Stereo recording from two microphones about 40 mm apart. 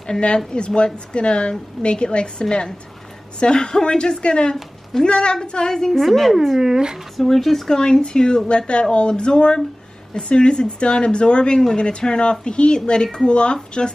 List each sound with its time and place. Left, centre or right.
0.5 s a woman's voice: left; by 6.3 s centre
6.3 s speech: centre
6.7 s speech: centre
7.2 s a woman's voice: centre; by 13.9 s left